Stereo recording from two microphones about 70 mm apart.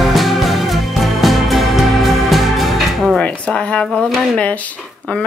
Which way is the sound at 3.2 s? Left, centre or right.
Centre.